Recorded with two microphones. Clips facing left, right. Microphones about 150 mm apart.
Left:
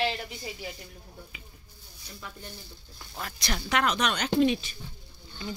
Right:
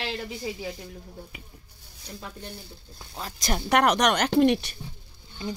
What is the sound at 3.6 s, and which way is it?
Speech, 60° right (ahead or behind).